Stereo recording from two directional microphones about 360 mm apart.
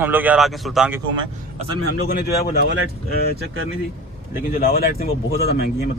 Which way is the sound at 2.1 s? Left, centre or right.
Left.